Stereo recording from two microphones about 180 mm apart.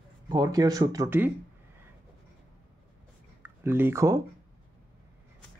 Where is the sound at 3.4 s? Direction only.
10° right (ahead or behind).